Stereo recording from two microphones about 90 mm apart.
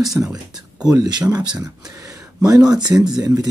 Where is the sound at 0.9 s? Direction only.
45° right (ahead or behind).